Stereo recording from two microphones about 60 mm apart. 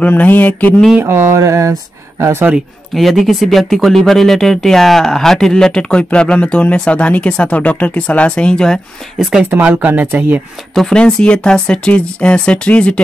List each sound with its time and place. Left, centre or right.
0.0 s mantra: left
1.0 s speech: right
2.9 s speech: centre
9.2 s speech: centre
9.8 s speech: right
10.9 s speech: centre